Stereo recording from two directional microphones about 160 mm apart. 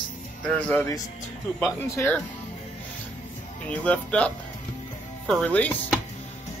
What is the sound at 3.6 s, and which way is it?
Speech, 10° left (ahead or behind).